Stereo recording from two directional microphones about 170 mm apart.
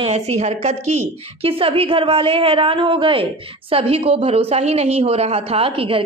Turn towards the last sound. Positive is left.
turn(degrees=-30)  # may be behind; listen again after turning